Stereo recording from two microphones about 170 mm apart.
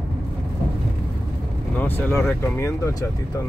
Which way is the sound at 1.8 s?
10° left (ahead or behind).